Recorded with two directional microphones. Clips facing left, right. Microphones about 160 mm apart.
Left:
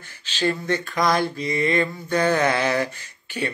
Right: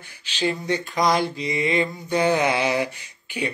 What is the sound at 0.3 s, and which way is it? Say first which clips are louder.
Speech: left 1 dB; 15° right (ahead or behind).